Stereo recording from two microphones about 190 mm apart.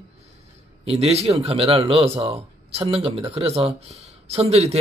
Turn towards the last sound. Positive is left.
turn(degrees=-35)  # may be behind; listen again after turning